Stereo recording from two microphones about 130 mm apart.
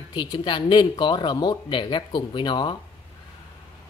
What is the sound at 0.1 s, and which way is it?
Speech, 35° left (ahead or behind).